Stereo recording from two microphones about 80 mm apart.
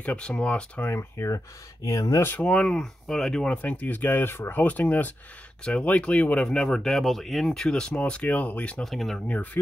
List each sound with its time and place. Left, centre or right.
0.0 s speech: centre
0.8 s speech: left
2.2 s speech: centre
8.8 s speech: centre
9.3 s speech: left